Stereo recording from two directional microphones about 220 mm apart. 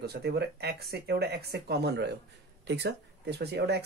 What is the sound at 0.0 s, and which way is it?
Speech, 45° right (ahead or behind).